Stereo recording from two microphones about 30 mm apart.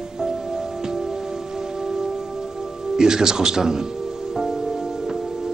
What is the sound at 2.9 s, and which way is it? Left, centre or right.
Speech, right.